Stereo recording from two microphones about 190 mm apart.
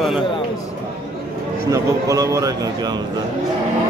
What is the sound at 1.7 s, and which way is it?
Speech, 15° right (ahead or behind).